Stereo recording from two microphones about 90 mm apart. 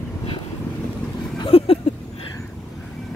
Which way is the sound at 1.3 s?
75° left (ahead or behind).